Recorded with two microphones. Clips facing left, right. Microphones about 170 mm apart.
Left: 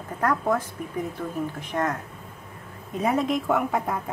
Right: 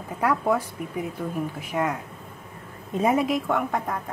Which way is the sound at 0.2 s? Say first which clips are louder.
Right 1 dB; 10° right (ahead or behind).